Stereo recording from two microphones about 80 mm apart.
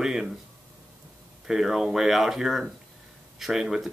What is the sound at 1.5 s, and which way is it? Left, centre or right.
Speech, centre.